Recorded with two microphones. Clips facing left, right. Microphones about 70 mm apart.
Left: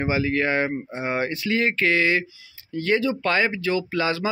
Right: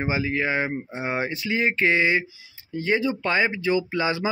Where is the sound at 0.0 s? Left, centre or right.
Centre.